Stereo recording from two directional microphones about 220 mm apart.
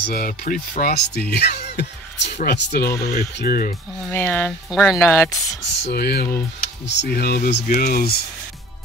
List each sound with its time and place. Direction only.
0.1 s speech: 40° left (ahead or behind)
4.1 s speech: 10° left (ahead or behind)
4.6 s speech: centre (ahead or behind)
5.0 s speech: 10° left (ahead or behind)
5.9 s speech: 45° left (ahead or behind)